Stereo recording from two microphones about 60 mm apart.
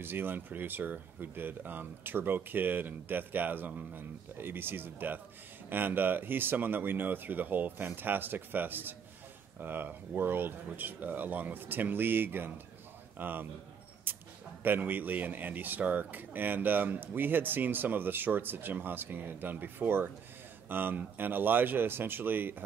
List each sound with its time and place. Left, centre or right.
0.0 s a man's voice: right
14.1 s a sound: right
14.6 s a man's voice: right